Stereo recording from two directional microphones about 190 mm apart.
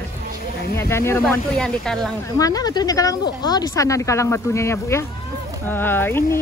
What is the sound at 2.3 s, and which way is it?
Speech, 20° left (ahead or behind).